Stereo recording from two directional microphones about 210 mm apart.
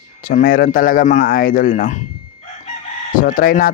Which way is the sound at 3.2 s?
45° left (ahead or behind).